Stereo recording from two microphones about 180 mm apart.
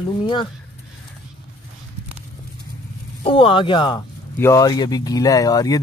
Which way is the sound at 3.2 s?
30° left (ahead or behind).